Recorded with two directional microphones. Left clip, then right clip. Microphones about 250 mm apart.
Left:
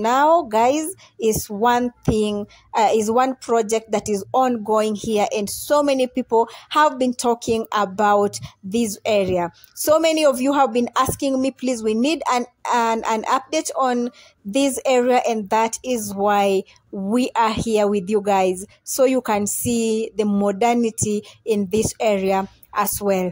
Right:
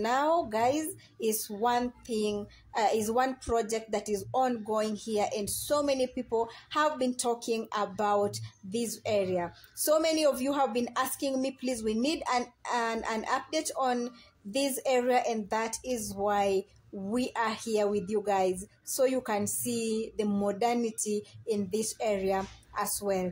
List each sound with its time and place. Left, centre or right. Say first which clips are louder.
0.0 s speech: left 11 dB; left